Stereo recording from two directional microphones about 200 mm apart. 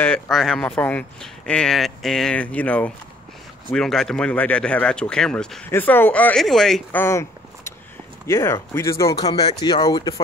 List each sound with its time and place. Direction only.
0.0 s speech: 5° left (ahead or behind)
8.3 s speech: 15° left (ahead or behind)